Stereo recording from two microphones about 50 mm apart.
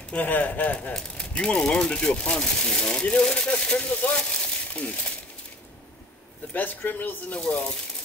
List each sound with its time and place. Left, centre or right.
0.1 s speech: left
0.9 s speech: centre
6.5 s speech: left